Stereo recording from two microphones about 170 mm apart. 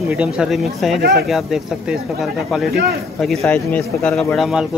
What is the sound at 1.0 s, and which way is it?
Speech, 65° right (ahead or behind).